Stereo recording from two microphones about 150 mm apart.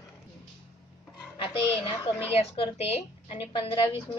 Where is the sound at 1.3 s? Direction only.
35° left (ahead or behind).